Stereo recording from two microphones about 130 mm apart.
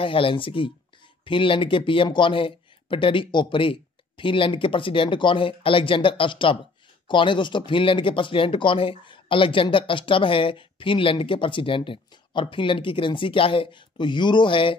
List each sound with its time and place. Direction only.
0.0 s speech: 45° left (ahead or behind)